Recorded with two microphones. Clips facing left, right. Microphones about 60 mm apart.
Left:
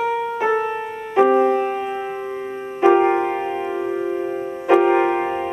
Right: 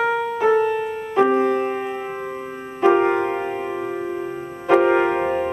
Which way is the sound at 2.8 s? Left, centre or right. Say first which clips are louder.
Left 2 dB; centre.